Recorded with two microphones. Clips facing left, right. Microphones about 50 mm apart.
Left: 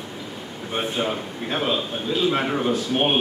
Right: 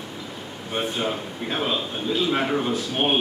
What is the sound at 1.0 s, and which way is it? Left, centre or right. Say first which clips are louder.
A man's voice: left 1 dB; centre.